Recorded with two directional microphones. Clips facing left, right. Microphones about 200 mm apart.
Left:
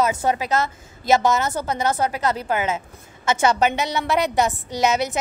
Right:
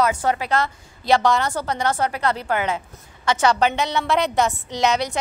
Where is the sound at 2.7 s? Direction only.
25° left (ahead or behind).